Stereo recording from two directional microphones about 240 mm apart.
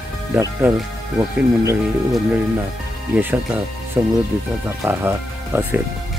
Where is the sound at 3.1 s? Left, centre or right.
Centre.